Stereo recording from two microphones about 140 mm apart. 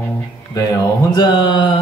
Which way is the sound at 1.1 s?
30° left (ahead or behind).